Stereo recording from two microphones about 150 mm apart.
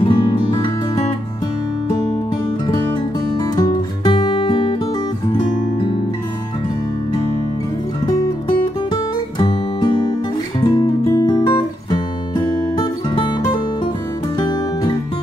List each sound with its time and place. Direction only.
0.0 s music: 35° left (ahead or behind)
2.6 s music: 30° left (ahead or behind)
9.4 s music: 35° left (ahead or behind)